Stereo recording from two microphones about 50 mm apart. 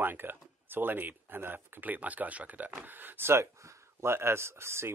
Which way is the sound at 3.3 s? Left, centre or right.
Right.